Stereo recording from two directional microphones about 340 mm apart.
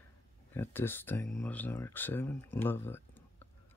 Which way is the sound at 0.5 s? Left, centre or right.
Centre.